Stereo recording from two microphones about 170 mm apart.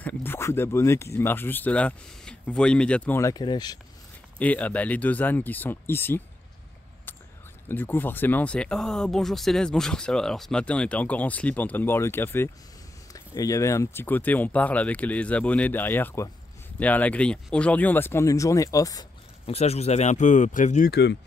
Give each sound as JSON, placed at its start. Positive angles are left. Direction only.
{"t": 0.0, "sound": "speech", "side_deg": 10}
{"t": 4.4, "sound": "speech", "side_deg": 10}
{"t": 7.6, "sound": "speech", "side_deg": 10}
{"t": 19.4, "sound": "speech", "side_deg": 35}
{"t": 20.9, "sound": "speech", "side_deg": 80}